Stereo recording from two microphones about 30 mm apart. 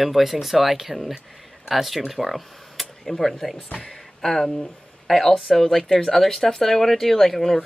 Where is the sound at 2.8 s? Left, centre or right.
Centre.